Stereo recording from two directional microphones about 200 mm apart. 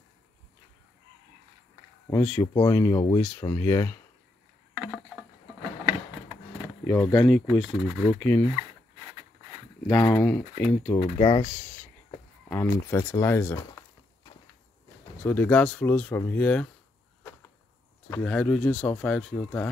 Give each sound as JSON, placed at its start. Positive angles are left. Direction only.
{"t": 2.0, "sound": "speech", "side_deg": 10}
{"t": 4.7, "sound": "a sound", "side_deg": -5}
{"t": 6.9, "sound": "speech", "side_deg": 5}
{"t": 10.0, "sound": "speech", "side_deg": 5}
{"t": 10.9, "sound": "speech", "side_deg": 25}
{"t": 12.4, "sound": "speech", "side_deg": 10}
{"t": 15.2, "sound": "speech", "side_deg": 10}
{"t": 18.1, "sound": "speech", "side_deg": 5}